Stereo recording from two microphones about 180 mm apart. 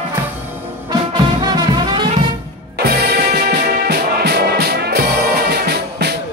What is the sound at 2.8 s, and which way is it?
Music, 65° right (ahead or behind).